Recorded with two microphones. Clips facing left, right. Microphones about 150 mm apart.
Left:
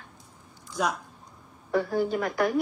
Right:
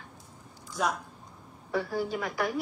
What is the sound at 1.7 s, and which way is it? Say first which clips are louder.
Speech: left 5 dB; 50° left (ahead or behind).